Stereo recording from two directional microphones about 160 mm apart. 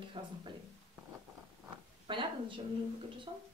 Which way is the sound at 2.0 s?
30° right (ahead or behind).